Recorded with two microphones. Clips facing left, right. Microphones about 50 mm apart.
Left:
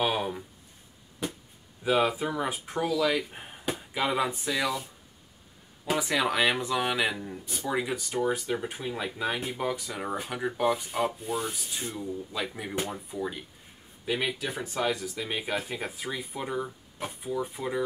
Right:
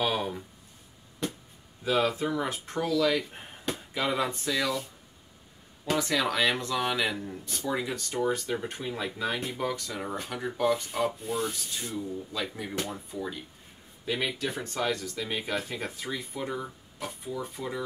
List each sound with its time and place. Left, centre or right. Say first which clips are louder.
0.0 s a sound: left 1 dB; centre
1.9 s speech: left 1 dB; centre
5.9 s speech: even; centre
11.5 s speech: right 1 dB; centre